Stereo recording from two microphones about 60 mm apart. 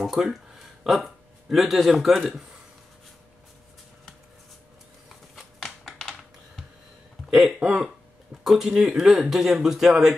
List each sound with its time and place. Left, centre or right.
0.0 s speech: centre
5.3 s typing: centre
7.6 s speech: centre